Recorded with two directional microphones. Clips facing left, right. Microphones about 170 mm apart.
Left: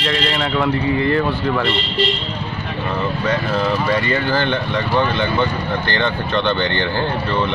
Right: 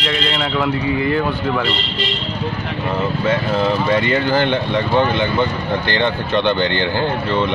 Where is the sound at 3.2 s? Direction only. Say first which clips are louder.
Right 2 dB; 25° right (ahead or behind).